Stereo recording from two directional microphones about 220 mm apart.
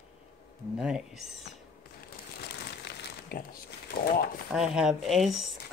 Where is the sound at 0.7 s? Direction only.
5° right (ahead or behind).